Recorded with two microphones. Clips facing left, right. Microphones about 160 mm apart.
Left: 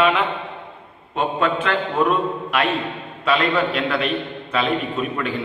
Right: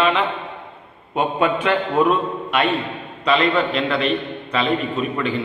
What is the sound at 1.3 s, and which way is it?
Speech, 10° right (ahead or behind).